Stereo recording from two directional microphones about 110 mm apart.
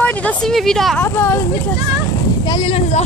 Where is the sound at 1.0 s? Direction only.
20° left (ahead or behind).